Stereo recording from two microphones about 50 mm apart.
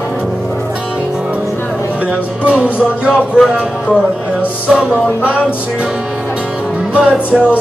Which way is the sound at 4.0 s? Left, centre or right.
Right.